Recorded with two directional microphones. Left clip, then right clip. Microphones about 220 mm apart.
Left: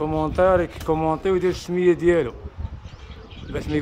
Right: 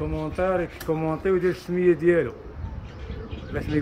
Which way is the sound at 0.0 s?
20° left (ahead or behind).